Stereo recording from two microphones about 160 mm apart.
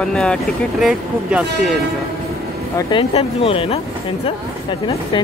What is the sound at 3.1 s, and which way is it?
Speech, 35° left (ahead or behind).